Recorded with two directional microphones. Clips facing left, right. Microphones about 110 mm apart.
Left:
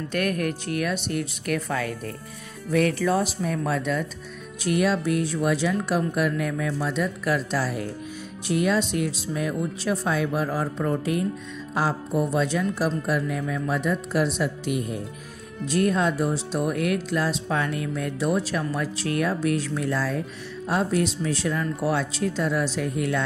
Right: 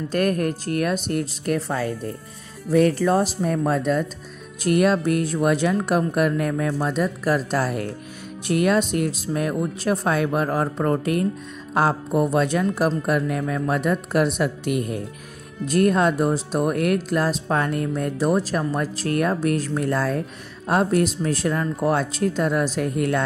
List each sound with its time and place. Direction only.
0.1 s speech: 35° right (ahead or behind)
4.6 s speech: 50° right (ahead or behind)